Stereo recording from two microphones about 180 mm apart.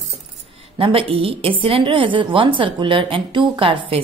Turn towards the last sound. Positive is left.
turn(degrees=-30)  # may be behind; listen again after turning